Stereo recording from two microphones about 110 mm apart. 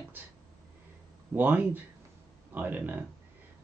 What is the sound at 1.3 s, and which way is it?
Speech, 15° right (ahead or behind).